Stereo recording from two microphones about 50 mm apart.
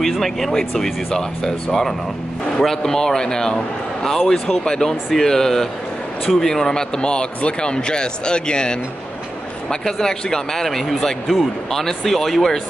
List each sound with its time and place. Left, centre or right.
0.0 s a man's voice: centre